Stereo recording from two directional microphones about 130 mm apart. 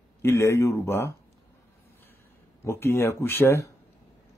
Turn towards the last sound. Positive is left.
turn(degrees=20)  # may be behind; listen again after turning